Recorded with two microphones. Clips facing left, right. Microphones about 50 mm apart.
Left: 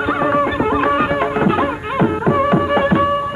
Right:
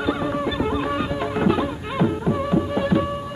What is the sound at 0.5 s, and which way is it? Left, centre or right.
Music, left.